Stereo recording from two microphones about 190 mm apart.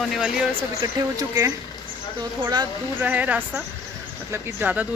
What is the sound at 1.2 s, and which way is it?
Speech, 15° right (ahead or behind).